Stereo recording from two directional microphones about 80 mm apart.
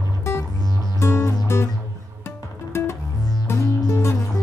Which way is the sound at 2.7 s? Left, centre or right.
Left.